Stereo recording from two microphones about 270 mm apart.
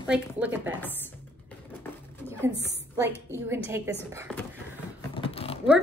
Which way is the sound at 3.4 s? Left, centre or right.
Centre.